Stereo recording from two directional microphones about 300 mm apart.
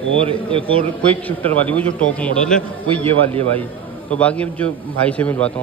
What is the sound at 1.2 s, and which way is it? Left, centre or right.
Speech, centre.